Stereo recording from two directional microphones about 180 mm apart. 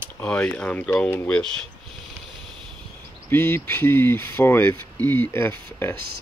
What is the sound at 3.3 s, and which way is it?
Speech, 10° left (ahead or behind).